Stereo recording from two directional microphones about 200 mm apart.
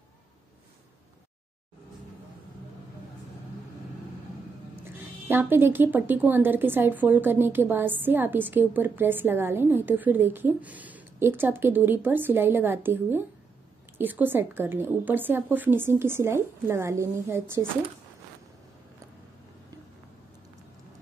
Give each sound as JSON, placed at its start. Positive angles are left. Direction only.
{"t": 4.8, "sound": "speech", "side_deg": -10}